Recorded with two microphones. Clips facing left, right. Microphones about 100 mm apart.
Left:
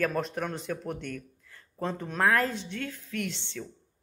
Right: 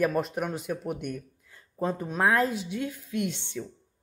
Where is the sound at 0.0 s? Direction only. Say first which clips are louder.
Right 3 dB; 10° right (ahead or behind).